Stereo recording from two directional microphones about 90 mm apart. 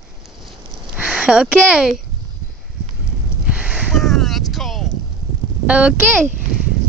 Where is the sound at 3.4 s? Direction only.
15° right (ahead or behind).